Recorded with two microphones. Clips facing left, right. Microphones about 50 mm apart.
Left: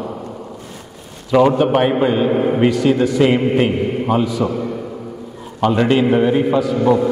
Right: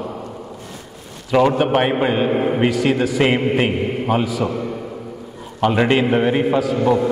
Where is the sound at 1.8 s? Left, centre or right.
Right.